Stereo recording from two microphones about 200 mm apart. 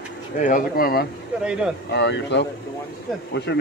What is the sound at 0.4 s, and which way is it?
Speech, 40° left (ahead or behind).